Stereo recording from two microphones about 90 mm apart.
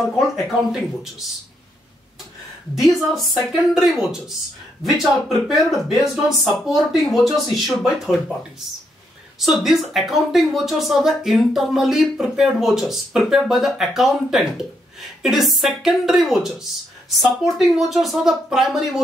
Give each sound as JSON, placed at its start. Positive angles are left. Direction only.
{"t": 0.0, "sound": "speech", "side_deg": -5}
{"t": 3.1, "sound": "speech", "side_deg": 0}
{"t": 9.4, "sound": "speech", "side_deg": -5}